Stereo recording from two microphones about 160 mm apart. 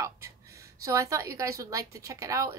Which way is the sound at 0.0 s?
20° right (ahead or behind).